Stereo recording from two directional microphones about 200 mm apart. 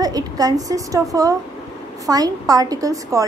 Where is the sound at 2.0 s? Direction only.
20° right (ahead or behind).